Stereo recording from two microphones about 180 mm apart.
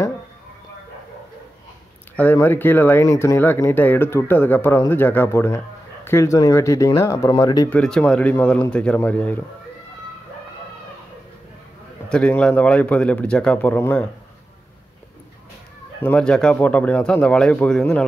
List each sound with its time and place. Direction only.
2.1 s speech: 10° left (ahead or behind)
7.7 s speech: 5° left (ahead or behind)
12.1 s speech: 5° left (ahead or behind)
16.0 s speech: 5° left (ahead or behind)